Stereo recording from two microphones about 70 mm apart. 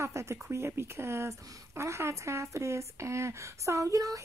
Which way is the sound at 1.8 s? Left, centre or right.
Right.